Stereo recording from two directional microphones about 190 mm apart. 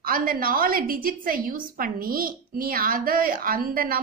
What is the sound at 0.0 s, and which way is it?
A woman's voice, 50° right (ahead or behind).